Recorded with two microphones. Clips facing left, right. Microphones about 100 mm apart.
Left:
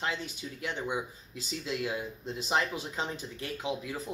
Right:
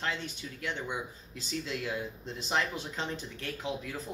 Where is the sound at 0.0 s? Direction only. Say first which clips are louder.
Left 1 dB; 15° left (ahead or behind).